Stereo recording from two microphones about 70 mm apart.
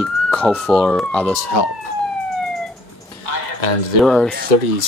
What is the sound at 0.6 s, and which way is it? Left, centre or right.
Speech, centre.